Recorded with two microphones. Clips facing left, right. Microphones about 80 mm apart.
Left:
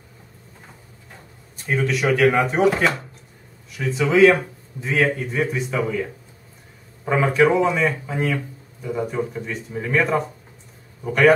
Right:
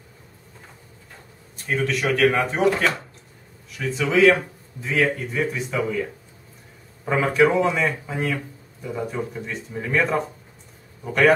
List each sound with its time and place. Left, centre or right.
1.7 s speech: centre
7.1 s speech: centre